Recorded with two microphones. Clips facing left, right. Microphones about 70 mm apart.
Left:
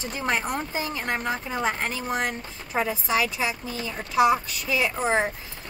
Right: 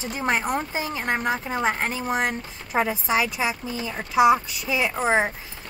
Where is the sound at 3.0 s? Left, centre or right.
Right.